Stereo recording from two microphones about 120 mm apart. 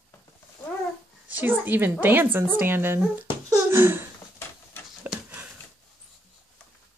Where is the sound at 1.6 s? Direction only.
15° right (ahead or behind).